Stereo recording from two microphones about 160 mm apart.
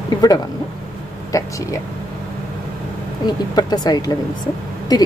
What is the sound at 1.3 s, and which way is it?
Speech, 20° left (ahead or behind).